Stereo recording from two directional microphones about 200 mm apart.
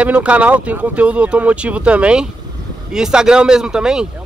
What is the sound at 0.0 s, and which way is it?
Speech, 5° right (ahead or behind).